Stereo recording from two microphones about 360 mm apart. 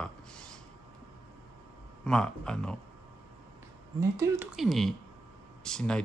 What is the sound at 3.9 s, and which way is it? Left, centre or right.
Speech, centre.